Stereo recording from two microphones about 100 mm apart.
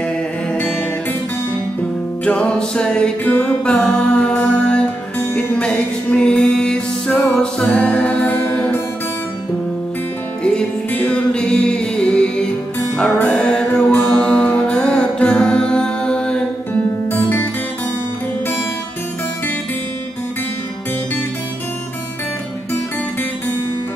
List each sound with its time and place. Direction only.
0.0 s music: 15° left (ahead or behind)
2.2 s music: 10° left (ahead or behind)
10.4 s music: 15° left (ahead or behind)